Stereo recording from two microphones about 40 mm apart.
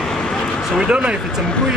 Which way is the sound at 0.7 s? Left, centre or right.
Right.